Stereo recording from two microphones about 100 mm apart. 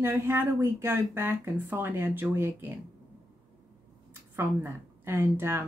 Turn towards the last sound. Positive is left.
turn(degrees=-25)  # may be behind; listen again after turning